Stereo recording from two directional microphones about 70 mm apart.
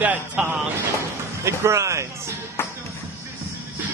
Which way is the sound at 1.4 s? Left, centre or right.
Right.